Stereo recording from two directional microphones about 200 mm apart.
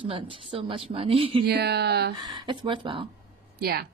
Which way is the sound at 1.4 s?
55° right (ahead or behind).